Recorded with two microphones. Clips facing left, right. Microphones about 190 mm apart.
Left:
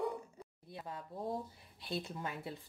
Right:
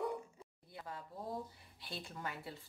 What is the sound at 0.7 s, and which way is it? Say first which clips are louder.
A woman's voice: left 3 dB; 25° left (ahead or behind).